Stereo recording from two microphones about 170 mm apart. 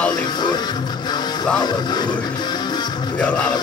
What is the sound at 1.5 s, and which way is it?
Speech, 25° left (ahead or behind).